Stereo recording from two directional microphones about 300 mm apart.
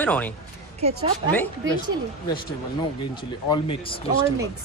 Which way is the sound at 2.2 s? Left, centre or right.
Centre.